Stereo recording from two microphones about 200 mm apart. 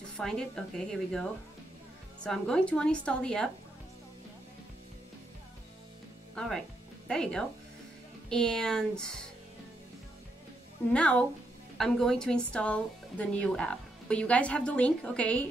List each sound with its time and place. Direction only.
0.2 s speech: centre (ahead or behind)
2.2 s speech: 5° left (ahead or behind)
7.1 s speech: 5° left (ahead or behind)
10.9 s speech: 5° left (ahead or behind)